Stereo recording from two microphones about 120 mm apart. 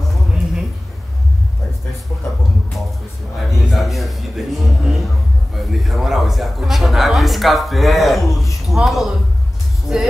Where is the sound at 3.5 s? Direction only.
Centre (ahead or behind).